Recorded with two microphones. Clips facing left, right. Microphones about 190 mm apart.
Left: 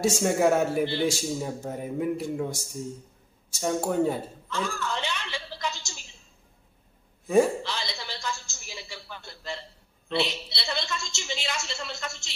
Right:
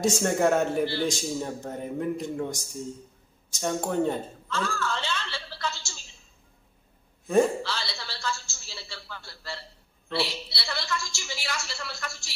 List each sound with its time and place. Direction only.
0.0 s speech: 5° left (ahead or behind)
3.5 s a sound: 5° left (ahead or behind)
7.6 s a woman's voice: 15° left (ahead or behind)